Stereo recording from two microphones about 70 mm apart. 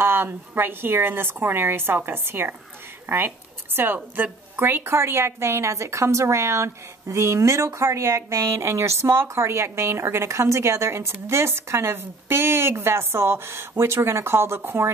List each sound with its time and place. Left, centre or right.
0.0 s a woman's voice: right